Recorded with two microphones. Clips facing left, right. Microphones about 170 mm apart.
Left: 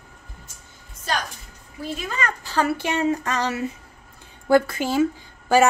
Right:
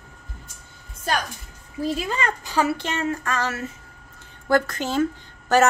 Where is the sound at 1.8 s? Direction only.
35° right (ahead or behind).